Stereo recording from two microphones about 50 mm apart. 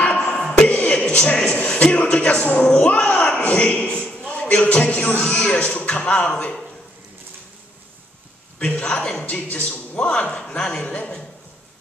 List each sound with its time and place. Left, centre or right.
0.0 s music: left
0.4 s a sound: centre
0.7 s music: left
1.0 s a man's voice: left
4.3 s a sound: left
4.6 s speech: left
8.5 s speech: left